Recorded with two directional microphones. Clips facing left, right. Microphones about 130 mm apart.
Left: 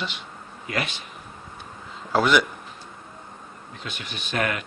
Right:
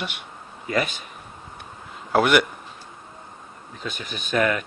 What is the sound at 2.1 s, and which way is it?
Speech, 60° right (ahead or behind).